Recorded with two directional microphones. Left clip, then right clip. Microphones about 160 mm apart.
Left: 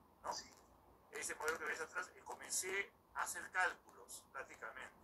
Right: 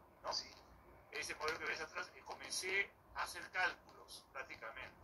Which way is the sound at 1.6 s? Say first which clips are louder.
Even; 10° right (ahead or behind).